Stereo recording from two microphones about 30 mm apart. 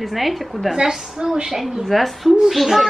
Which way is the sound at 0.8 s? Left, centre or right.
Right.